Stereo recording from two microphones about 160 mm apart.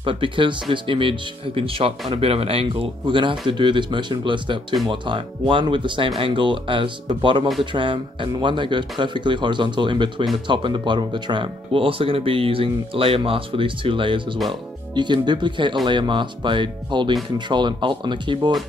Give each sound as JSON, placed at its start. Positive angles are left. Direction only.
{"t": 0.0, "sound": "speech", "side_deg": -35}